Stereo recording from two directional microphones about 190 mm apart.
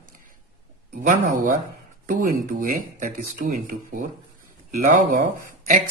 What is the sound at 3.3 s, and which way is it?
Speech, 45° right (ahead or behind).